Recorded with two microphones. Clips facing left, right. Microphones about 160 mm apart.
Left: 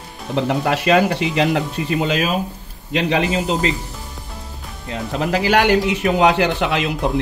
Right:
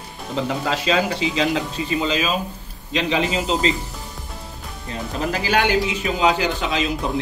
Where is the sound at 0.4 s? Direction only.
65° left (ahead or behind).